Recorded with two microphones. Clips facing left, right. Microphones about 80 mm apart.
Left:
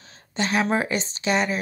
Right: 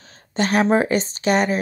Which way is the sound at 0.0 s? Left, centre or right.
Right.